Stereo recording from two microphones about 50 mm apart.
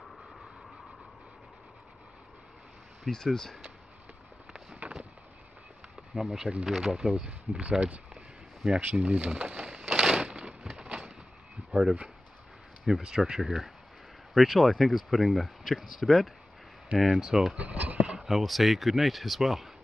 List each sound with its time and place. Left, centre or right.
3.3 s speech: centre
4.5 s a sound: centre
4.7 s a sound: right
6.1 s speech: centre
8.8 s speech: right
9.8 s crushing: centre
10.8 s a sound: centre
11.7 s speech: centre
17.2 s speech: centre
17.6 s speech: right
18.0 s a sound: centre
18.3 s speech: centre